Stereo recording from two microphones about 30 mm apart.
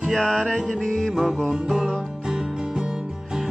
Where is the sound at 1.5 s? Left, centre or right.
Centre.